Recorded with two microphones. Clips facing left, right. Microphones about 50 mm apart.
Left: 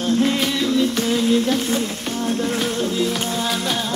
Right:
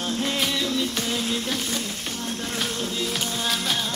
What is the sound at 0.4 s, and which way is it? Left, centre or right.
Music, centre.